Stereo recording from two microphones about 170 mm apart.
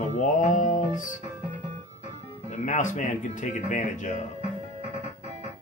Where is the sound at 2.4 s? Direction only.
45° left (ahead or behind).